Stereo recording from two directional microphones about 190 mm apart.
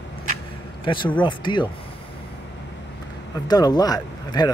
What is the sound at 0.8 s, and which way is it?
Speech, 25° left (ahead or behind).